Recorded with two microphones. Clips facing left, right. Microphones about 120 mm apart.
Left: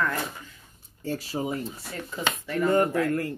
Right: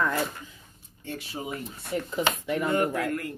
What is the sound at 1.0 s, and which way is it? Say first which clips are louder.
Speech: left 6 dB; 40° left (ahead or behind).